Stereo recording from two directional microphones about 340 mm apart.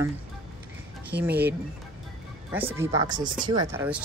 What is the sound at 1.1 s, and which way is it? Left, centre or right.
Speech, right.